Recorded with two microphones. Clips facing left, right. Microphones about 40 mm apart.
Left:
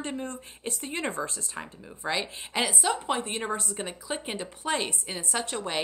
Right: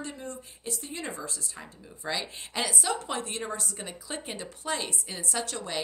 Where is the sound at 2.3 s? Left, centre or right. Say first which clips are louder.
Left 3 dB; centre.